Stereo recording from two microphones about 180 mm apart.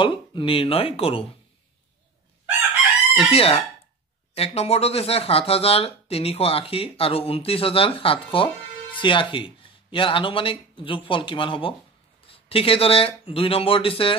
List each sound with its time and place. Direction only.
0.0 s speech: 25° left (ahead or behind)
3.2 s speech: 30° left (ahead or behind)